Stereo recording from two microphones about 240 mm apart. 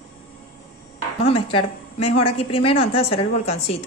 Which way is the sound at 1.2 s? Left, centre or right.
Left.